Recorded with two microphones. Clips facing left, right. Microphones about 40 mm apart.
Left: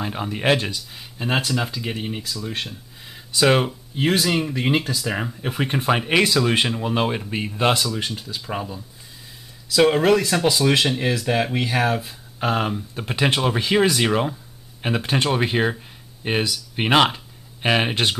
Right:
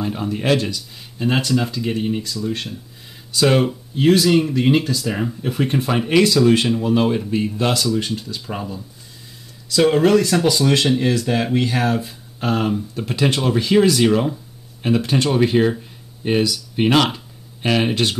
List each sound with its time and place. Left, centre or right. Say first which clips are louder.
0.0 s speech: right 1 dB; left
7.8 s speech: right 5 dB; centre